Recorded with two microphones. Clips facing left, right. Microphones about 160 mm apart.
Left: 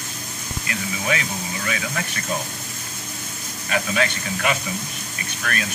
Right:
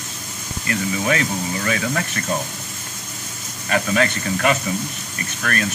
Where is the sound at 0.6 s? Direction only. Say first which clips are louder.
Right 5 dB; 45° right (ahead or behind).